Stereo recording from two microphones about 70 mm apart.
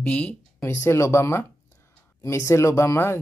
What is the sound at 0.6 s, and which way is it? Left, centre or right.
Speech, left.